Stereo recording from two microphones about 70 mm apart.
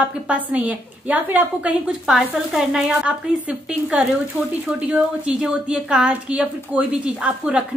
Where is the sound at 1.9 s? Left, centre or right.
Centre.